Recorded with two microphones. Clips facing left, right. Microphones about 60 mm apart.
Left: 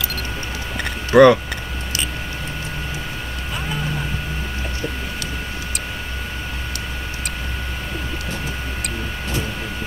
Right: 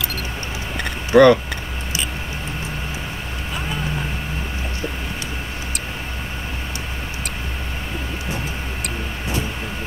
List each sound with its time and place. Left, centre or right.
1.1 s speech: centre